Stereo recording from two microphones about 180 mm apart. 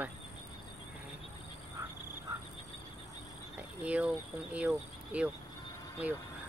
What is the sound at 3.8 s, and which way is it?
Speech, 5° right (ahead or behind).